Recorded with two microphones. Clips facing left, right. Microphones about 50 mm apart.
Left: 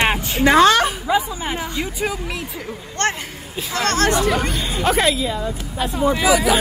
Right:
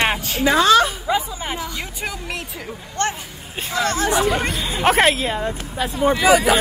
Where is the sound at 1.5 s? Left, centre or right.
Left.